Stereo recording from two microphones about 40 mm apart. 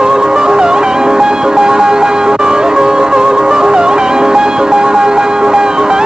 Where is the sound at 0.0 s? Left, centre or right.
Centre.